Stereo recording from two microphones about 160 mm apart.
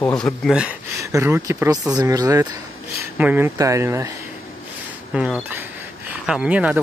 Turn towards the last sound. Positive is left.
turn(degrees=-10)  # may be behind; listen again after turning